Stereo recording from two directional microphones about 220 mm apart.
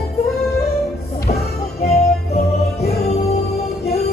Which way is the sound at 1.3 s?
30° left (ahead or behind).